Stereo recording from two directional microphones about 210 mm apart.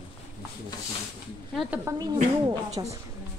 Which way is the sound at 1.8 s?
15° right (ahead or behind).